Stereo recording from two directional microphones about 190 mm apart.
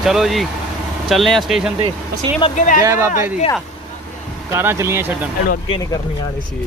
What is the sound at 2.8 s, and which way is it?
Speech, 15° right (ahead or behind).